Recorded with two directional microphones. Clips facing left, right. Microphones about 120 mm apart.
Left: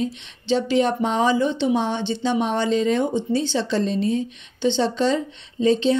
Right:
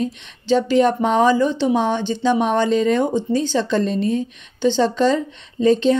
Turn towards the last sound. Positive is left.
turn(degrees=-50)  # may be behind; listen again after turning